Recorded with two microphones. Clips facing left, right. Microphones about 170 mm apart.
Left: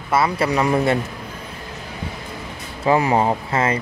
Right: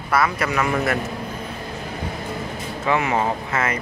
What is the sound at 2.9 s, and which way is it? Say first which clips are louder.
Speech: left 4 dB; 35° left (ahead or behind).